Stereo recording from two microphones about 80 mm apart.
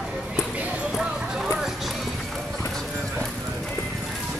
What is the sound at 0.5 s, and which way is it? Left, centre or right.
Clip-clop, centre.